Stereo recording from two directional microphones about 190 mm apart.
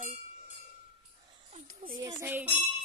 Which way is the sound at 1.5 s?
45° right (ahead or behind).